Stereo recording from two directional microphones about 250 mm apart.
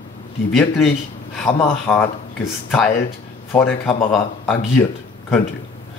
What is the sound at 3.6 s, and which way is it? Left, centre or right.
Speech, centre.